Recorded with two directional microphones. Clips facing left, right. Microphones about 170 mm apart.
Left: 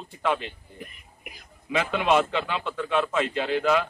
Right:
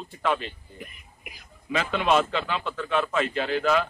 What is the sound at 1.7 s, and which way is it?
Speech, 15° left (ahead or behind).